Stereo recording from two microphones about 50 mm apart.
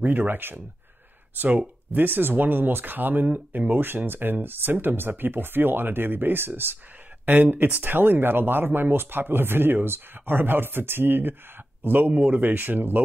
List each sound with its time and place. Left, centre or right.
0.0 s speech: right